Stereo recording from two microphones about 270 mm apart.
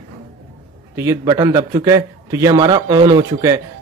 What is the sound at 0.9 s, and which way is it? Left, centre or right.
A man's voice, centre.